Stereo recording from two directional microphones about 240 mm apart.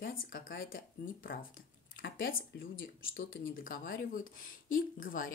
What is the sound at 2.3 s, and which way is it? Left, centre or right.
Speech, left.